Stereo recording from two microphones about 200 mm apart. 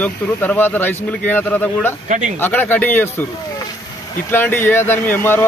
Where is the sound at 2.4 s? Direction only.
10° left (ahead or behind).